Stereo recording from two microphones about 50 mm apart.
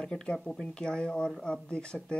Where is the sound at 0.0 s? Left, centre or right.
Centre.